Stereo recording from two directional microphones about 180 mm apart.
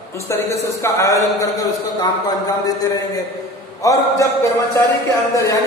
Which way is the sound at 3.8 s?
20° left (ahead or behind).